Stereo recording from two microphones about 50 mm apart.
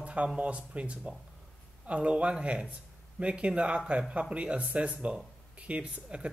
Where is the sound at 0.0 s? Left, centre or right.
Right.